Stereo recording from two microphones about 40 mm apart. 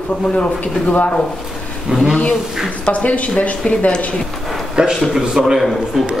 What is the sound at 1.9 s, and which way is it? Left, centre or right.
Speech, centre.